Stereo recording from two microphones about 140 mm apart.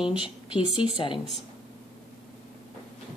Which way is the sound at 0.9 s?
35° left (ahead or behind).